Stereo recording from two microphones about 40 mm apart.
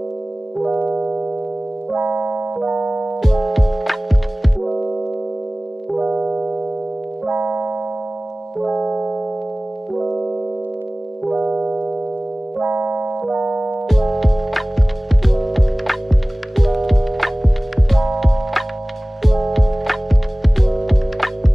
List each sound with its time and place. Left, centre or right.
2.2 s piano: right
3.1 s music: centre
5.9 s music: right
8.5 s music: centre
9.9 s piano: centre
12.6 s keyboard: right
13.3 s music: right
13.8 s music: centre